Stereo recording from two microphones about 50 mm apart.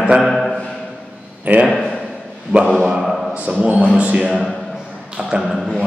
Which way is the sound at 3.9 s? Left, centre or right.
Right.